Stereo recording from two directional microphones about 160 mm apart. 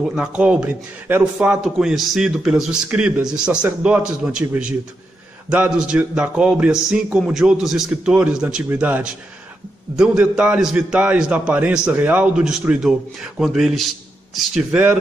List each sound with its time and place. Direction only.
0.0 s a man's voice: 5° right (ahead or behind)